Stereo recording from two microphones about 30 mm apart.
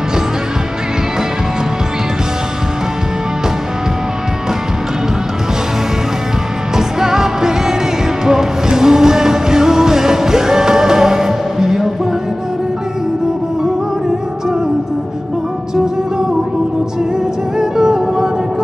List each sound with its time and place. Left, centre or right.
6.8 s music: centre
15.7 s music: centre
17.6 s music: right